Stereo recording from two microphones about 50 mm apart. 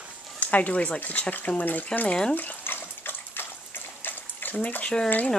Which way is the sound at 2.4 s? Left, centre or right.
Left.